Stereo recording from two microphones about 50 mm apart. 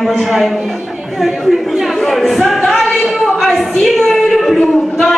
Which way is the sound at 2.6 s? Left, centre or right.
Centre.